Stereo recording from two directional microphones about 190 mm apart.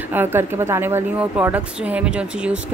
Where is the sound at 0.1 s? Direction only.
10° right (ahead or behind).